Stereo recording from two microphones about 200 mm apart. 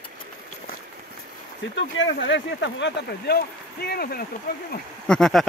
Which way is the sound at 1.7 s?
70° left (ahead or behind).